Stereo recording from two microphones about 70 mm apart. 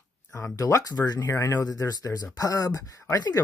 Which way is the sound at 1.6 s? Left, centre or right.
Left.